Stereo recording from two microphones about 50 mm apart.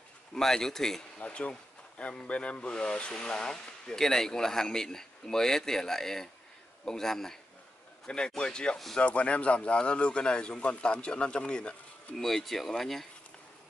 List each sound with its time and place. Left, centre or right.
0.3 s speech: centre
1.2 s speech: left
8.4 s speech: centre
12.2 s speech: centre